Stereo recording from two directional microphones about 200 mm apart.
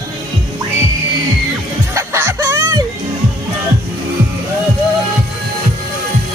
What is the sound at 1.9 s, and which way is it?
Music, 15° right (ahead or behind).